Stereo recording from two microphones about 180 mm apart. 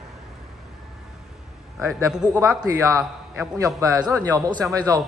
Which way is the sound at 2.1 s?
5° right (ahead or behind).